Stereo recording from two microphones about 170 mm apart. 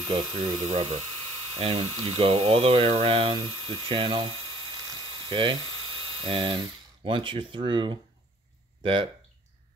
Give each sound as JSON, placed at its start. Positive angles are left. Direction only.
{"t": 0.1, "sound": "speech", "side_deg": -25}
{"t": 0.6, "sound": "speech", "side_deg": -40}
{"t": 4.8, "sound": "a sound", "side_deg": -30}
{"t": 6.2, "sound": "speech", "side_deg": -30}